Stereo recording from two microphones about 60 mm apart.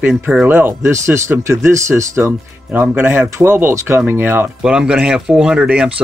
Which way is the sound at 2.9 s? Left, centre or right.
Right.